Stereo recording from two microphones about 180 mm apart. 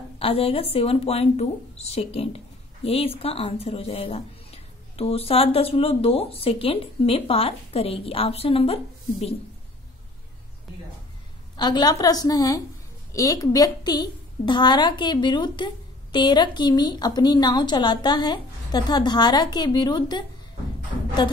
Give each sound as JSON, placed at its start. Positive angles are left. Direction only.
{"t": 0.2, "sound": "speech", "side_deg": 30}
{"t": 11.5, "sound": "a woman's voice", "side_deg": 25}